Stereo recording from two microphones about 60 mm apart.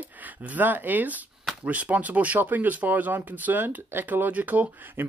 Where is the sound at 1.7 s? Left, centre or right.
Right.